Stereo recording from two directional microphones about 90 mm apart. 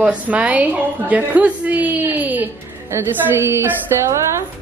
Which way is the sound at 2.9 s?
30° right (ahead or behind).